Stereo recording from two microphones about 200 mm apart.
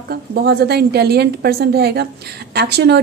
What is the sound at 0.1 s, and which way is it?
A woman's voice, 50° right (ahead or behind).